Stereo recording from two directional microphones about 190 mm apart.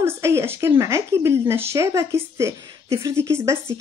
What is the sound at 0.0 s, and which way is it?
Speech, 15° right (ahead or behind).